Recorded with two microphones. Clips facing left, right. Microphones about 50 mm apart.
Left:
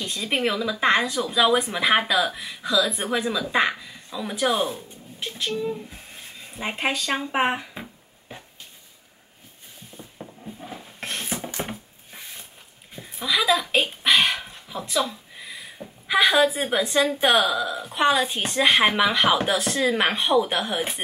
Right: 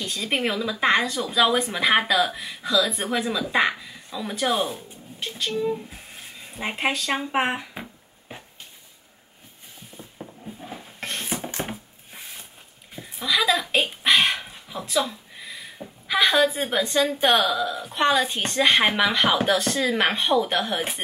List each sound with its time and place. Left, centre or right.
0.0 s speech: centre
9.9 s a sound: centre
17.2 s speech: centre